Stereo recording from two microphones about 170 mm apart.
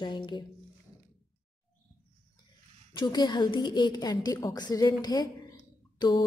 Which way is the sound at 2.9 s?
25° left (ahead or behind).